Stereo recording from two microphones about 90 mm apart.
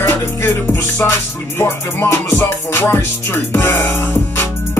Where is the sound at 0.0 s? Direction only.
30° left (ahead or behind).